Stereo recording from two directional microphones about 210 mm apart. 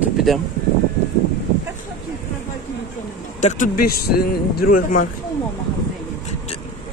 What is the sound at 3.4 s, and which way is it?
A man's voice, 35° left (ahead or behind).